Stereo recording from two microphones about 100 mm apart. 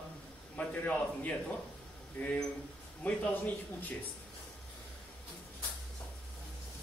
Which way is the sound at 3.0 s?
15° left (ahead or behind).